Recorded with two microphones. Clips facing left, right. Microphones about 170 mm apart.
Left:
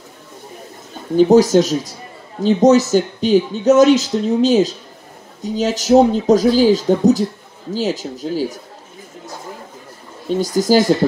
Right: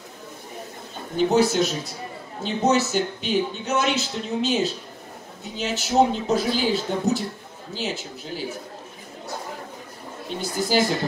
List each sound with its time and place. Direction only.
1.1 s speech: 40° left (ahead or behind)
10.4 s speech: 40° left (ahead or behind)